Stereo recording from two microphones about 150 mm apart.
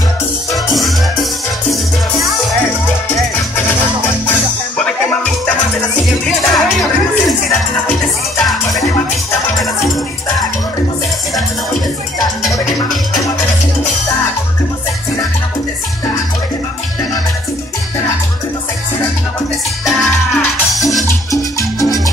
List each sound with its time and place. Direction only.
1.7 s music: centre (ahead or behind)
4.3 s music: 10° left (ahead or behind)
6.4 s music: centre (ahead or behind)
8.4 s music: centre (ahead or behind)
19.8 s music: centre (ahead or behind)
21.3 s music: 20° left (ahead or behind)